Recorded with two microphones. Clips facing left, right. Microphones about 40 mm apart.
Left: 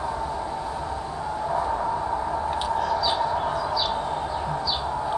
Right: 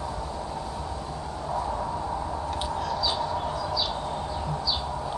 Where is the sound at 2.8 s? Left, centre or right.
Centre.